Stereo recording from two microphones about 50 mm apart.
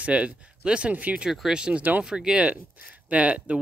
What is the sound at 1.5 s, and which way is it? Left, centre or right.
Speech, centre.